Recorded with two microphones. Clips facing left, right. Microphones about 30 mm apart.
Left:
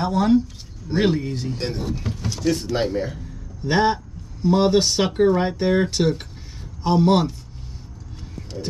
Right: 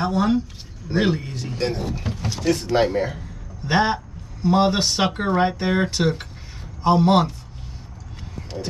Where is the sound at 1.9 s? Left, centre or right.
Right.